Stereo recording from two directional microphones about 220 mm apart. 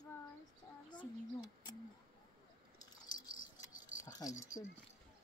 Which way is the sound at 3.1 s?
15° left (ahead or behind).